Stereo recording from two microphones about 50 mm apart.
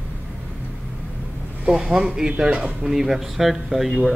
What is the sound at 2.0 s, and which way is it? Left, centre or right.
Speech, centre.